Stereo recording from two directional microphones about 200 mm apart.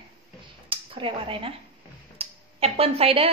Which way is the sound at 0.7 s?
25° right (ahead or behind).